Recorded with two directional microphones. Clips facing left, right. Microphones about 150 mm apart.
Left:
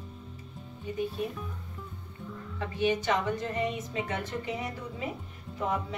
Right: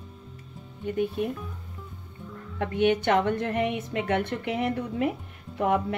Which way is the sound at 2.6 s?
60° right (ahead or behind).